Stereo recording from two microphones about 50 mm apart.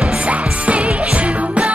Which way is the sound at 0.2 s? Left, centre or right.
Right.